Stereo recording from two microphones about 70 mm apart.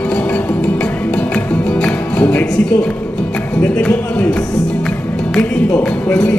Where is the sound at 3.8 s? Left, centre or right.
Left.